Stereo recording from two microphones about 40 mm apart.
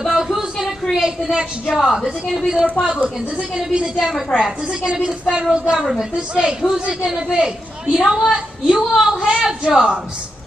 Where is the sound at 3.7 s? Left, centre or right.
Right.